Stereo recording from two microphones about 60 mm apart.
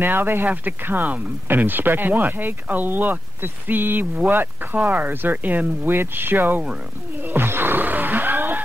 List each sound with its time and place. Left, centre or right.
0.0 s speech: right
7.2 s music: right